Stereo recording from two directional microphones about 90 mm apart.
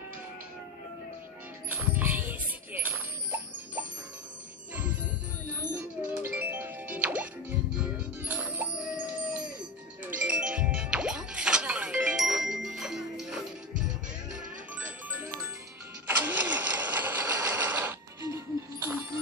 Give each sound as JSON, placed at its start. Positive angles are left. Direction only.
{"t": 1.7, "sound": "music", "side_deg": -15}
{"t": 5.8, "sound": "music", "side_deg": -20}
{"t": 15.0, "sound": "music", "side_deg": -20}
{"t": 16.1, "sound": "sewing machine", "side_deg": -20}
{"t": 17.6, "sound": "a sound", "side_deg": -20}
{"t": 18.2, "sound": "music", "side_deg": -30}